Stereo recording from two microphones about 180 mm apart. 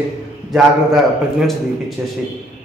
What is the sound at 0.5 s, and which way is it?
A man's voice, centre (ahead or behind).